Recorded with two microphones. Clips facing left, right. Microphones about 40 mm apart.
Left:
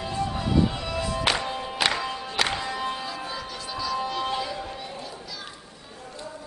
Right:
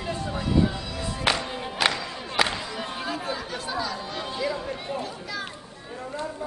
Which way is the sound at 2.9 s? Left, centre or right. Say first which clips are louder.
Right 3 dB; right.